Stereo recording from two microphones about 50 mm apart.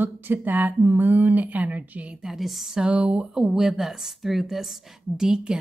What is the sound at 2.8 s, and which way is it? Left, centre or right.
Speech, right.